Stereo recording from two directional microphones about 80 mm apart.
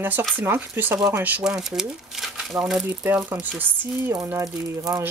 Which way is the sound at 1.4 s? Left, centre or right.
Centre.